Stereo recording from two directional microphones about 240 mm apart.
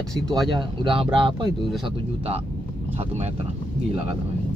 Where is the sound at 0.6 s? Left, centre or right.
Right.